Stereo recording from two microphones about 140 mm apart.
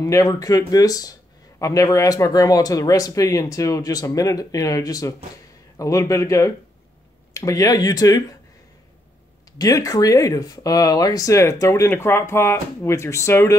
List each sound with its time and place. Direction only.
0.0 s speech: 25° left (ahead or behind)
9.6 s speech: 25° left (ahead or behind)